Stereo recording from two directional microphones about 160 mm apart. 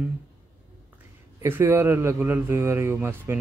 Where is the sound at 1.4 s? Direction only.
15° right (ahead or behind).